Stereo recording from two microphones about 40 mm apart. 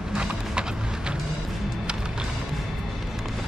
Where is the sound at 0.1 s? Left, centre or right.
Right.